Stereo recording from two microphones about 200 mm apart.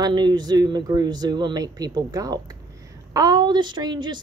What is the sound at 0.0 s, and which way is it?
A woman's voice, 20° right (ahead or behind).